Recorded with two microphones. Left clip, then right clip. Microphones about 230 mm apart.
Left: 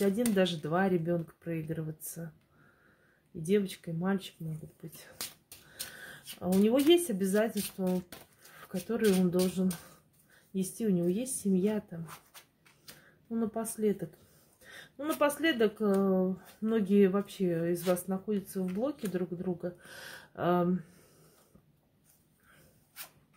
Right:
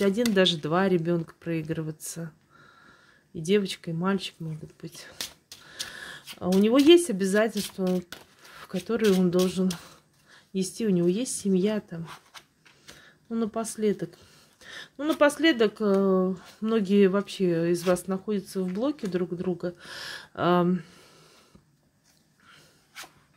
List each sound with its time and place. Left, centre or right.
0.0 s speech: right
3.4 s speech: right
5.8 s speech: right
13.3 s speech: right